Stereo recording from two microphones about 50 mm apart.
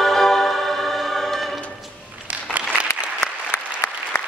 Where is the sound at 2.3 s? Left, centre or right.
Right.